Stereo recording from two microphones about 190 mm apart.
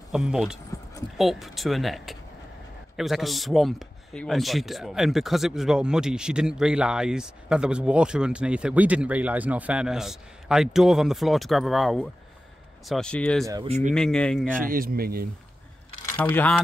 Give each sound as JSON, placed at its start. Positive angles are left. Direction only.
{"t": 0.1, "sound": "speech", "side_deg": 0}
{"t": 13.7, "sound": "speech", "side_deg": -35}
{"t": 13.9, "sound": "speech", "side_deg": 5}
{"t": 14.7, "sound": "speech", "side_deg": -50}
{"t": 16.2, "sound": "speech", "side_deg": 10}